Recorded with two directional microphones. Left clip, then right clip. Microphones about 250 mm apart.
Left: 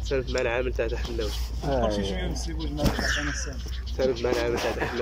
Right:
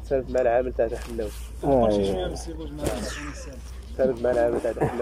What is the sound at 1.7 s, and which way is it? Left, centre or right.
Speech, right.